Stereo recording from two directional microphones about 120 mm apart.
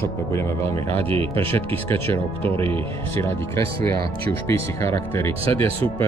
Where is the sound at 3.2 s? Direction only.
20° left (ahead or behind).